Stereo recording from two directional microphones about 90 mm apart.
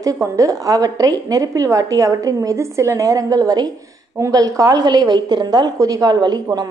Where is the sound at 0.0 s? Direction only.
35° right (ahead or behind); by 5.7 s 55° right (ahead or behind).